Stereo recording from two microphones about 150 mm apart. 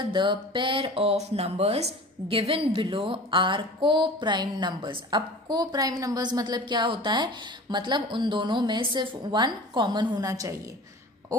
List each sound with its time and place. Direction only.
0.0 s a woman's voice: 30° right (ahead or behind)